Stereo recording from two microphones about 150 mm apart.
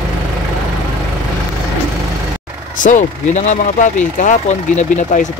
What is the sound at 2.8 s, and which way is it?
Speech, 55° left (ahead or behind).